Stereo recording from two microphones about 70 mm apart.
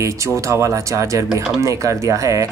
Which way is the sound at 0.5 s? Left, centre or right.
Right.